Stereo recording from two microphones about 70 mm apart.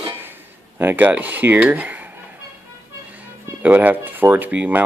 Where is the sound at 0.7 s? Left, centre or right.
Right.